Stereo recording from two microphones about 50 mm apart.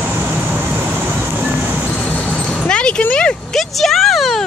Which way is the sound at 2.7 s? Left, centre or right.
Centre.